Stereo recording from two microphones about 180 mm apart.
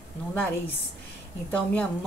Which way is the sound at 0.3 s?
10° left (ahead or behind).